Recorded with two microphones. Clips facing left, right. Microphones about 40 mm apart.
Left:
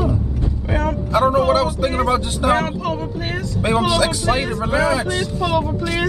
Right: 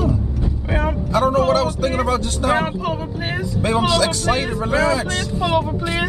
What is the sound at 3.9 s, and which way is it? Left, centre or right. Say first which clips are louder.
Speech: even; centre.